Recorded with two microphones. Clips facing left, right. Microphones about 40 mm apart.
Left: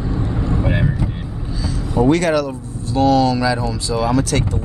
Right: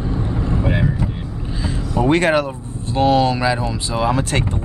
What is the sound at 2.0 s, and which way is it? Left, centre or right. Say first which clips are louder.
Speech: even; right.